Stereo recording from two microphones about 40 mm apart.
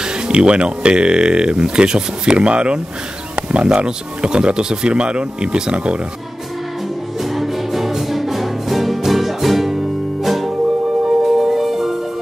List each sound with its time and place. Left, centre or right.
0.0 s speech: right
7.2 s music: centre